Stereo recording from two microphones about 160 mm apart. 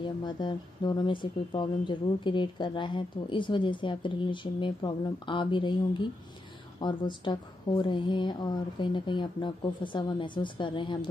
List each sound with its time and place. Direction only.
0.2 s speech: 25° left (ahead or behind)